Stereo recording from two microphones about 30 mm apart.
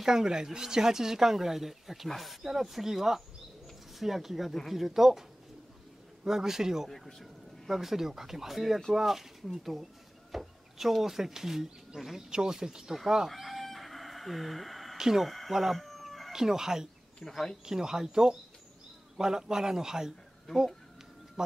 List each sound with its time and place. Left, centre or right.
0.0 s speech: centre
6.2 s speech: centre
6.9 s speech: centre
7.6 s a man's voice: centre
13.5 s chicken: centre
15.0 s speech: centre
15.2 s speech: centre
15.5 s chicken: centre
16.3 s speech: centre
17.3 s speech: centre
17.6 s a man's voice: centre